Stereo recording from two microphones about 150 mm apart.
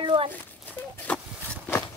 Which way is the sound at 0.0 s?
35° right (ahead or behind).